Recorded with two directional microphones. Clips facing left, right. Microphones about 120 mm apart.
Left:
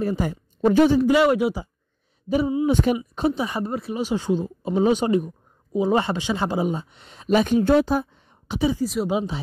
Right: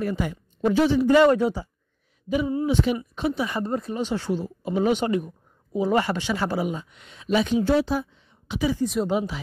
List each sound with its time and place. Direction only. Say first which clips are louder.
0.0 s a woman's voice: left 3 dB; 35° left (ahead or behind)
0.7 s speech: left 4 dB; 45° left (ahead or behind)
1.0 s speech: right 1 dB; 10° left (ahead or behind)
2.2 s speech: left 3 dB; 35° left (ahead or behind)
2.6 s speech: left 3 dB; 50° left (ahead or behind)
3.3 s speech: left 1 dB; 15° left (ahead or behind)
3.6 s speech: even; 5° left (ahead or behind); by 8.5 s 50° left (ahead or behind)
8.8 s speech: even; centre (ahead or behind)
9.1 s speech: left 1 dB; 20° left (ahead or behind)